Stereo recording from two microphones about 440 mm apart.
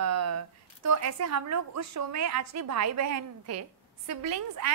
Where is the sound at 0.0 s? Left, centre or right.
Right.